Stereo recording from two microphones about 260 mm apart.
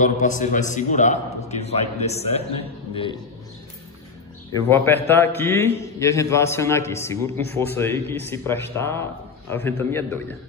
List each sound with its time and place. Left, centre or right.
0.0 s a man's voice: left
4.6 s a man's voice: centre